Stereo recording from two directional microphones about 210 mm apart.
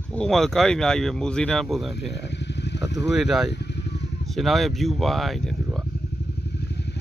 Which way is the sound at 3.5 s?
55° left (ahead or behind).